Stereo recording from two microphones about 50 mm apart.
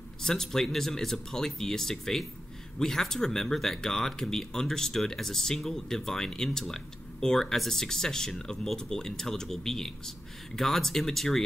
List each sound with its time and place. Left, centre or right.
0.2 s speech: centre